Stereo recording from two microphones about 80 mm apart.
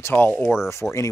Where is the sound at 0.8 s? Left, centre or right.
Centre.